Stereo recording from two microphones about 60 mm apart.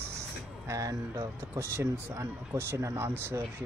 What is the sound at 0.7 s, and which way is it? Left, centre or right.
Speech, right.